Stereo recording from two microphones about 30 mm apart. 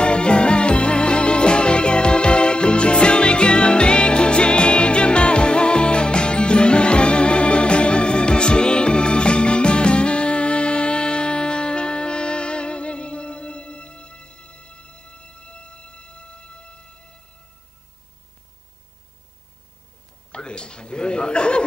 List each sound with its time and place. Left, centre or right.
0.0 s music: left
20.2 s chuckle: left